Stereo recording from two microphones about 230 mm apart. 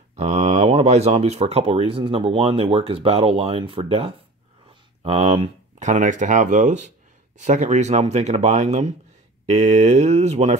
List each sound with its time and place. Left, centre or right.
0.1 s speech: right